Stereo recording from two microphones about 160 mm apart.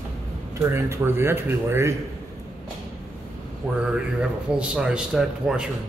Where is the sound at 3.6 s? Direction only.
5° right (ahead or behind).